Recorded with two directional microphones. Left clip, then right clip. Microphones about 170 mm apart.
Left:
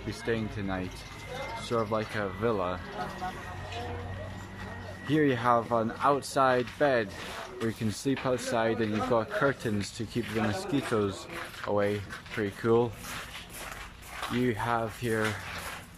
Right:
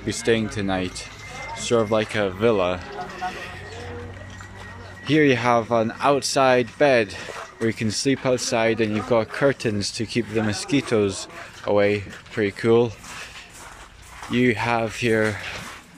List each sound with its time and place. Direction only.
0.1 s speech: 15° right (ahead or behind)
5.0 s speech: 5° right (ahead or behind)
14.4 s speech: 5° right (ahead or behind)